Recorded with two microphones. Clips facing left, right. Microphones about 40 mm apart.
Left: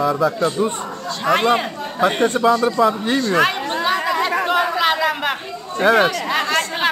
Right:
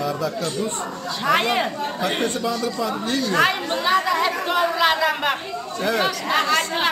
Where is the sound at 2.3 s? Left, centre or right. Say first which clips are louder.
Left 8 dB; left.